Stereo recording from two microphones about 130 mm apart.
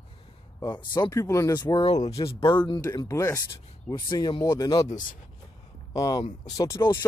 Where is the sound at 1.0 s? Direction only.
25° left (ahead or behind).